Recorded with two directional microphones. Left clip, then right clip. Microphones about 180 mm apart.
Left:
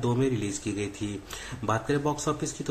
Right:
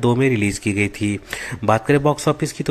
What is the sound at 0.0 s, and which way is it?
Speech, 30° right (ahead or behind).